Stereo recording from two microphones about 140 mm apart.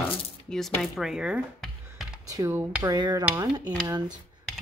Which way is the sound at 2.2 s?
25° right (ahead or behind).